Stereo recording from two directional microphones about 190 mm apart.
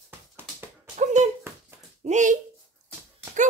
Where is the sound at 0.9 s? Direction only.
40° right (ahead or behind).